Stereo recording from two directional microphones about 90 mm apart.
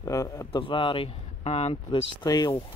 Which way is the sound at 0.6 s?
70° left (ahead or behind).